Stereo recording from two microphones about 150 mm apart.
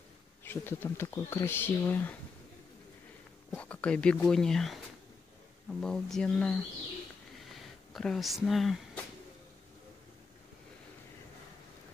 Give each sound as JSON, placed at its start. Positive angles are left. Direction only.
{"t": 0.4, "sound": "speech", "side_deg": 15}
{"t": 3.5, "sound": "speech", "side_deg": 10}
{"t": 7.9, "sound": "speech", "side_deg": 0}